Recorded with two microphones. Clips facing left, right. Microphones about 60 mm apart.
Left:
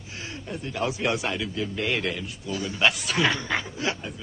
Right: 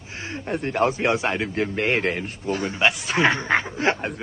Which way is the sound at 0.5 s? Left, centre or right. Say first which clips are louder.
Right 7 dB; right.